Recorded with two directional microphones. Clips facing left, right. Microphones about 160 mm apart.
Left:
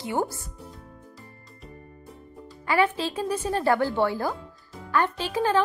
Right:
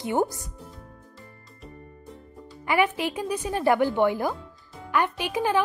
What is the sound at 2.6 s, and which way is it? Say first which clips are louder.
A woman's voice: even; 15° right (ahead or behind).